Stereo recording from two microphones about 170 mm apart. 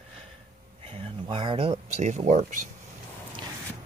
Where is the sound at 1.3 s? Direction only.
30° right (ahead or behind); by 2.6 s 45° right (ahead or behind).